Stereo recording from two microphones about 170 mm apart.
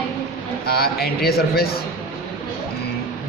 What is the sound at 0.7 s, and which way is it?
A man's voice, 65° left (ahead or behind).